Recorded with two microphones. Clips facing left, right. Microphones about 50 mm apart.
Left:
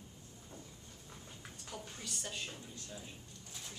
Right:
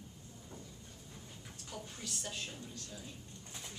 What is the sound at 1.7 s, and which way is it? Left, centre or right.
Speech, centre.